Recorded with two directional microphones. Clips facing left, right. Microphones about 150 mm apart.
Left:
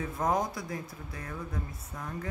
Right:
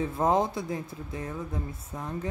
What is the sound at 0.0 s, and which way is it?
Speech, 25° right (ahead or behind).